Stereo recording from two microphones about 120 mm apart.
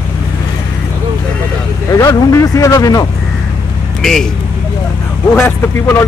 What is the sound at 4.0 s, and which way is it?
Speech, 5° left (ahead or behind).